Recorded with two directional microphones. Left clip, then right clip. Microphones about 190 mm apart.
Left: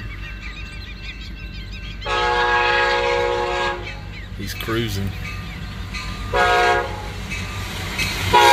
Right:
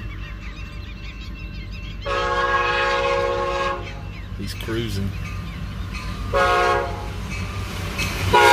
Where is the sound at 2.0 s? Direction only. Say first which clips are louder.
Left 3 dB; 35° right (ahead or behind).